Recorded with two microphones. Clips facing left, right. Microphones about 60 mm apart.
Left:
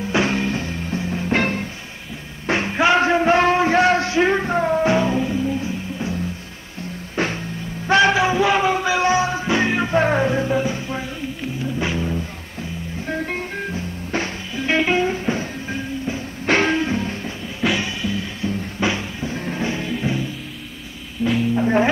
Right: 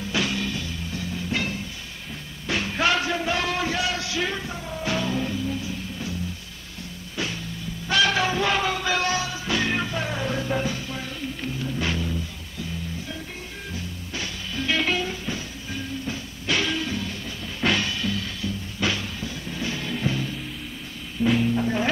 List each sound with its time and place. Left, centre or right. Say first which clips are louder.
0.1 s music: left 7 dB; left
2.4 s music: left 6 dB; left
4.8 s music: left 8 dB; left
7.2 s music: left 7 dB; left
8.1 s music: left 6 dB; centre
9.9 s music: left 11 dB; left
10.7 s music: left 5 dB; left
13.0 s music: left 11 dB; left
13.7 s music: left 6 dB; left
14.5 s music: left 5 dB; left
17.6 s music: left 2 dB; centre
19.3 s music: left 9 dB; left
19.7 s music: left 4 dB; centre
21.2 s music: left 1 dB; centre